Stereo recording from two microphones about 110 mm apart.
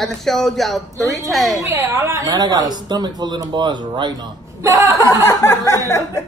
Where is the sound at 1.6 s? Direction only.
25° right (ahead or behind); by 4.3 s 40° right (ahead or behind).